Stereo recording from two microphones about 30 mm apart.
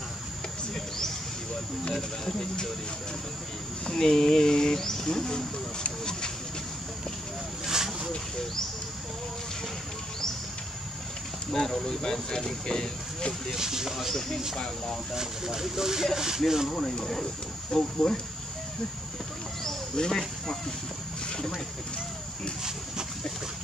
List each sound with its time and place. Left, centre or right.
1.9 s speech: centre
3.8 s speech: left
7.6 s a sound: centre
11.5 s speech: centre
13.6 s speech: centre
15.1 s speech: centre
16.7 s speech: centre
19.6 s a sound: centre